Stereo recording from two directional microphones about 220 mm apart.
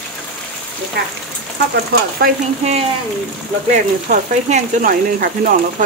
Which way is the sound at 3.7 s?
35° right (ahead or behind).